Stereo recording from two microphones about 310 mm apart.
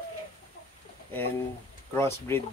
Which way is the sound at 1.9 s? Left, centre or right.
Centre.